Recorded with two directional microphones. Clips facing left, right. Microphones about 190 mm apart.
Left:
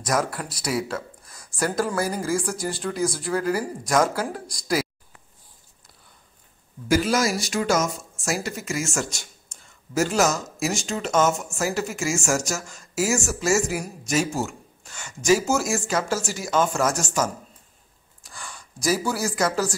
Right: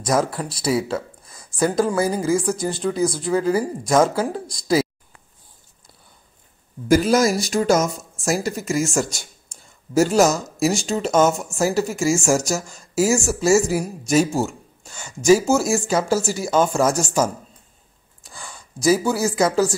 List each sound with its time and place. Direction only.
0.0 s speech: 25° right (ahead or behind)
6.9 s speech: 45° right (ahead or behind)
9.9 s speech: 35° right (ahead or behind)
18.9 s speech: 25° right (ahead or behind)